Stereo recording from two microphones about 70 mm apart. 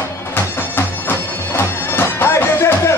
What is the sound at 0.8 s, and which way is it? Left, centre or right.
Bagpipes, left.